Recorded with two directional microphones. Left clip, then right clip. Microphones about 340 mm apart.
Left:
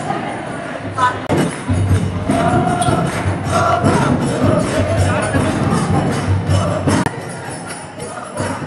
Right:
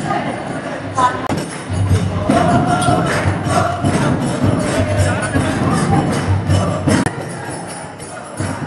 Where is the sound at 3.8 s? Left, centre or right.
Centre.